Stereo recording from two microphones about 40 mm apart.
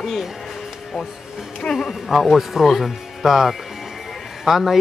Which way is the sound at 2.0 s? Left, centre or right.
Centre.